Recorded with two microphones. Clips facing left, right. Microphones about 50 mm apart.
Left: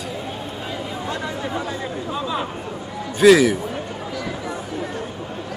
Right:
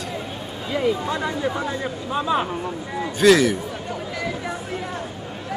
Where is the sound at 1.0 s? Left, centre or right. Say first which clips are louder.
Right 3 dB; right.